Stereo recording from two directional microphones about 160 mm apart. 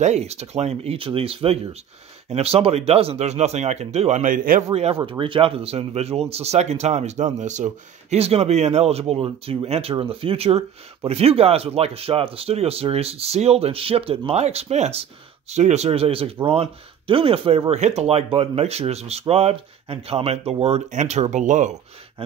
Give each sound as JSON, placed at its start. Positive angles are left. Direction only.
{"t": 0.0, "sound": "speech", "side_deg": -40}
{"t": 5.0, "sound": "speech", "side_deg": -30}